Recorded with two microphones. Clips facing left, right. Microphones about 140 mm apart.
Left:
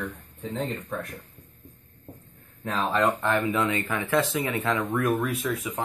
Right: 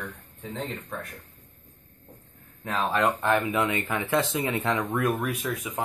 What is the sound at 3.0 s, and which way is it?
Speech, 15° right (ahead or behind).